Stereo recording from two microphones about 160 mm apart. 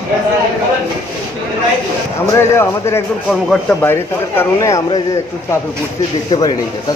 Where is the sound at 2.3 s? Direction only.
15° left (ahead or behind).